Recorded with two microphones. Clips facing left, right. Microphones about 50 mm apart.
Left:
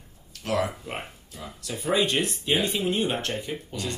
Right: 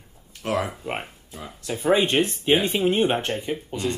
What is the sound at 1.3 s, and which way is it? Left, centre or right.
Speech, right.